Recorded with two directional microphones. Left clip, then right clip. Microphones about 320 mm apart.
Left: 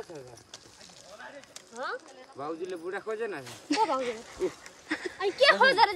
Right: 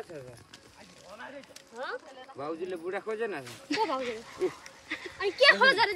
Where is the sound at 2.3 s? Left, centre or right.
Centre.